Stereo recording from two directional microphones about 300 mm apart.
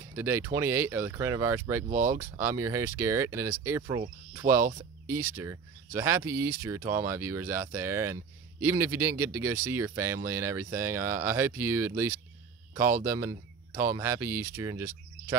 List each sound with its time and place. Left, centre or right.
0.0 s speech: centre
1.9 s speech: right
2.1 s speech: centre